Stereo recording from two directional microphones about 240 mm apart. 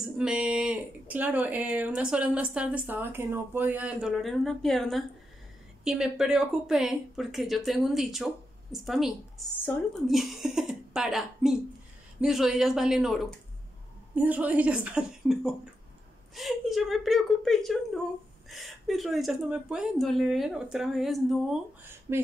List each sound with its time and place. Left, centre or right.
0.0 s speech: centre
22.1 s speech: centre